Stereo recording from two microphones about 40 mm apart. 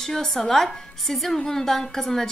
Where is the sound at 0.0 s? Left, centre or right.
Centre.